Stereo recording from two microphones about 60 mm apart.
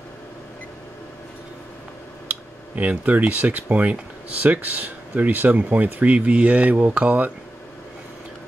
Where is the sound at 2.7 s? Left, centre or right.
Right.